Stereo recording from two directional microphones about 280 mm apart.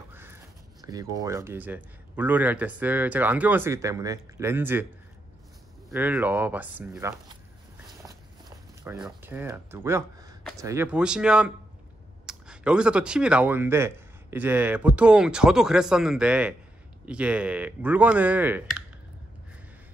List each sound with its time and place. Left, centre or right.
0.1 s crow: centre
0.8 s a man's voice: centre
5.9 s a man's voice: centre
8.1 s a sound: centre
10.6 s speech: centre